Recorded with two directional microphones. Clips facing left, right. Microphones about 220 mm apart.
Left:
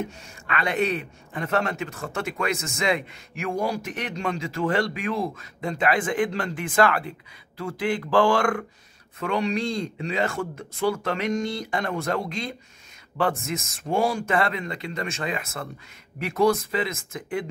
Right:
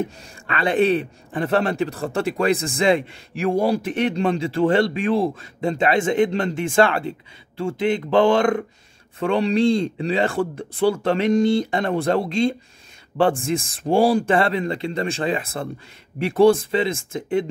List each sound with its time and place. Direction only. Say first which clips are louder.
0.0 s a man's voice: right 5 dB; 30° right (ahead or behind)